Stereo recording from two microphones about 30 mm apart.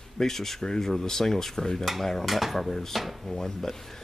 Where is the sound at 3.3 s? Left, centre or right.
Centre.